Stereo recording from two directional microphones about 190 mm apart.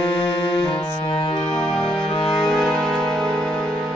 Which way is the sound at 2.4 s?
Centre (ahead or behind).